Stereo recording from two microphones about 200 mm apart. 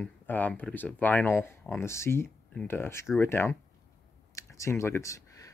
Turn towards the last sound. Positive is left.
turn(degrees=15)  # may be behind; listen again after turning